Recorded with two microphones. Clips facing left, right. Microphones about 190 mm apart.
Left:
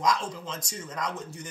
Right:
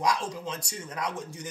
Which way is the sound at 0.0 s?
10° right (ahead or behind).